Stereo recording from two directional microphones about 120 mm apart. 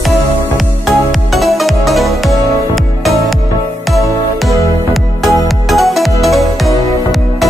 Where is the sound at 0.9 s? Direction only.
Centre (ahead or behind).